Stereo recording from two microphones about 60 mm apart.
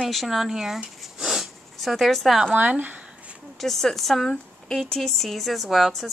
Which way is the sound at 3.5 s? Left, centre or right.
Centre.